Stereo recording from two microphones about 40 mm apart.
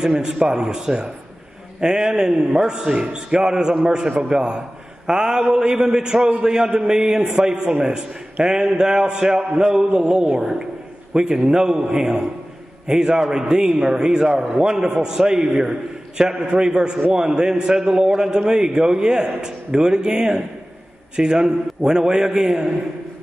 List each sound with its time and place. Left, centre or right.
0.0 s a man's voice: centre